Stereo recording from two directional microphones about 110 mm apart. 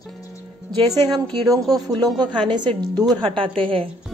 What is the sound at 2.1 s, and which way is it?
A woman's voice, 45° right (ahead or behind).